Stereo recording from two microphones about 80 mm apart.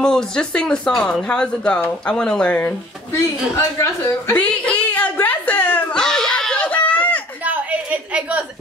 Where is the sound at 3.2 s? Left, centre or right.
Left.